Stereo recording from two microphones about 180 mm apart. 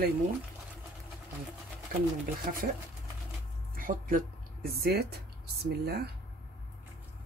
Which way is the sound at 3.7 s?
50° right (ahead or behind).